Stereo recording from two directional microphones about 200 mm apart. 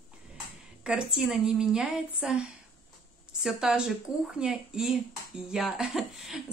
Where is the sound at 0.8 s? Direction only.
5° right (ahead or behind).